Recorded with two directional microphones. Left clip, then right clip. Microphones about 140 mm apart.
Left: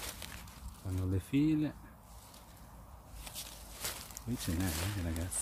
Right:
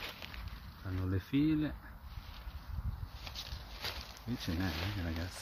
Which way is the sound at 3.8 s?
25° right (ahead or behind).